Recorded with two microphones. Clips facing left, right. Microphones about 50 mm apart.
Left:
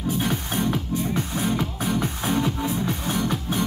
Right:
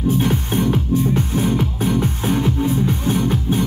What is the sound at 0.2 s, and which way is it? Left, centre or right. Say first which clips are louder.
Music: right 6 dB; right.